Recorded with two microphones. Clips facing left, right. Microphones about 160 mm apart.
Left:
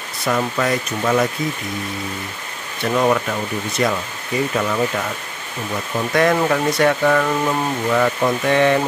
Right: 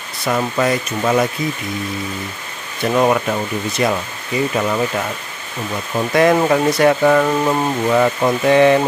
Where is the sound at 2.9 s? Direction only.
15° right (ahead or behind).